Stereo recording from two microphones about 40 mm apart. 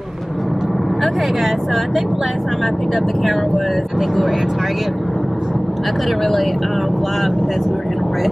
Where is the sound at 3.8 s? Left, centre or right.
Centre.